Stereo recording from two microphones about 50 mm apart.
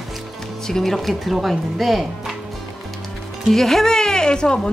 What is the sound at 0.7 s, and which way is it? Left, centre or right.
Speech, centre.